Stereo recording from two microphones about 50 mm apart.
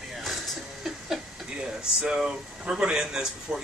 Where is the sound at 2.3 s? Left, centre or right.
Centre.